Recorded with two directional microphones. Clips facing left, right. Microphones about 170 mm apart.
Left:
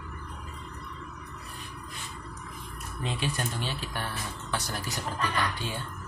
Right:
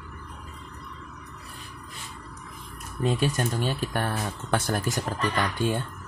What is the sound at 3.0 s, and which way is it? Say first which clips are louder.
Speech: right 7 dB; 45° right (ahead or behind).